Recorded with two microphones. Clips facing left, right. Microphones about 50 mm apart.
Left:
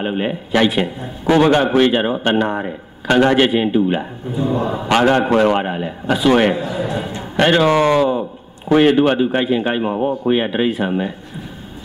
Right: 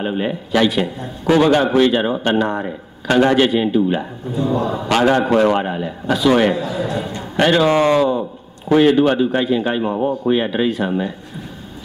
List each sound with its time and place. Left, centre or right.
0.0 s a man's voice: left